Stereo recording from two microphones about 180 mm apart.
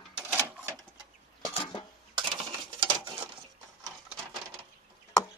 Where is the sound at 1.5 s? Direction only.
25° left (ahead or behind).